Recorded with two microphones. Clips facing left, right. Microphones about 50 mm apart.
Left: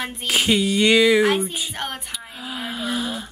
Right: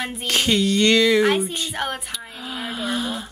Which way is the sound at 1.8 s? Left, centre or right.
Centre.